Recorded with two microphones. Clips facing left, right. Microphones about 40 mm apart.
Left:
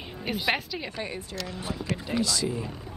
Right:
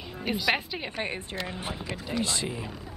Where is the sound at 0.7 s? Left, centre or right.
Right.